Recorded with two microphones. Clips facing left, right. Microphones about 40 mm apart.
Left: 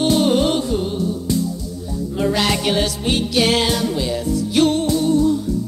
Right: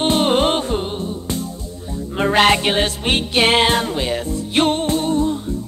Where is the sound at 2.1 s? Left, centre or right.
Right.